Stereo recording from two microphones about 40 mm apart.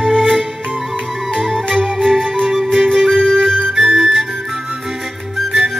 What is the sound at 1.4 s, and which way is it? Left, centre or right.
Music, centre.